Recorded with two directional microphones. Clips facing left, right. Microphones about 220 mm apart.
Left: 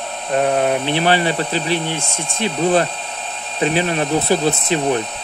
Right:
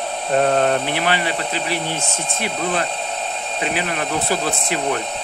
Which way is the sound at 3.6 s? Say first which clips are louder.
Left 6 dB; 30° left (ahead or behind).